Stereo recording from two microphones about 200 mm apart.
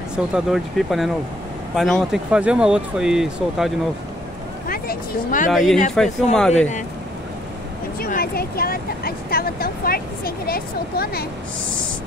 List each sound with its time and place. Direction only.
0.1 s speech: 5° right (ahead or behind)
4.6 s vehicle: 45° left (ahead or behind)
5.5 s speech: centre (ahead or behind)
8.0 s speech: 50° left (ahead or behind)